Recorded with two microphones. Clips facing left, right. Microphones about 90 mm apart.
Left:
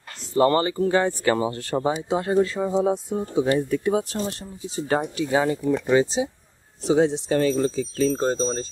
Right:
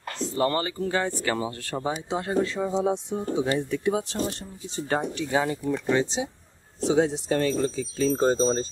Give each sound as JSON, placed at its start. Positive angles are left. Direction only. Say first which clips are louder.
{"t": 0.4, "sound": "speech", "louder": "left 7 dB", "side_deg": 25}
{"t": 2.0, "sound": "speech", "louder": "left 3 dB", "side_deg": 5}